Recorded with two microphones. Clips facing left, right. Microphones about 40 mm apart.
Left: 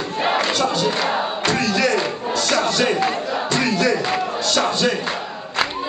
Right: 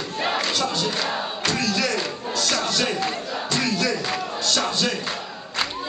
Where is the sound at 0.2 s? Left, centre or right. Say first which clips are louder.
Left 5 dB; centre.